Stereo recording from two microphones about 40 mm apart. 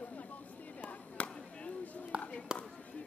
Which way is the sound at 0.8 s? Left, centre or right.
Left.